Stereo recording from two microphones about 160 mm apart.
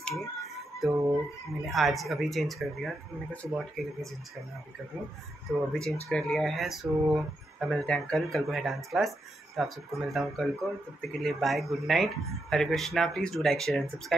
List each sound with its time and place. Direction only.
0.0 s speech: centre (ahead or behind)
1.7 s speech: centre (ahead or behind)
5.5 s speech: centre (ahead or behind)